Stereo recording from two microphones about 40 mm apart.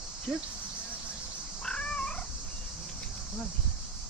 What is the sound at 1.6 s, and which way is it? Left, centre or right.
Cat, left.